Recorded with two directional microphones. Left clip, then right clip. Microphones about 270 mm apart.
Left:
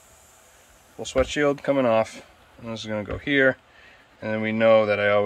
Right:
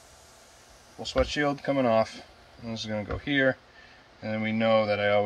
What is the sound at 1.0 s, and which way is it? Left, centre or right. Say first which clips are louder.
Speech: left 4 dB; centre.